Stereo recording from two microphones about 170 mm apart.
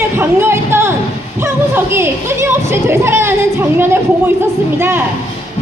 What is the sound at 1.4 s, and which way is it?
Speech, 15° right (ahead or behind).